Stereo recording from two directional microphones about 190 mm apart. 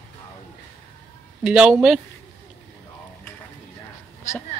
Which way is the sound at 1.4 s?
5° right (ahead or behind).